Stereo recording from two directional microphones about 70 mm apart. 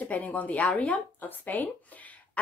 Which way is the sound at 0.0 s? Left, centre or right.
Left.